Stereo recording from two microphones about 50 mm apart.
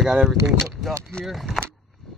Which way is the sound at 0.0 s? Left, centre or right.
Centre.